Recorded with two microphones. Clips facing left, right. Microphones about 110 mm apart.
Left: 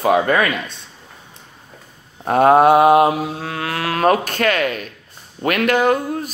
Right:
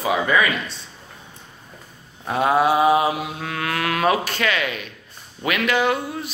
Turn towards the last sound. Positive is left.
turn(degrees=45)  # may be behind; listen again after turning